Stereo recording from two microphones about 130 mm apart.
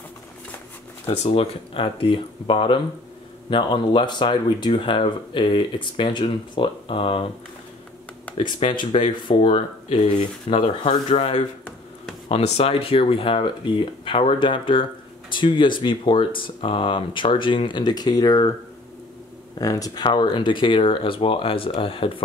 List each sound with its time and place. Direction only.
1.0 s speech: 50° left (ahead or behind)
8.4 s speech: 40° left (ahead or behind)
19.6 s speech: 25° left (ahead or behind); by 22.2 s 40° left (ahead or behind)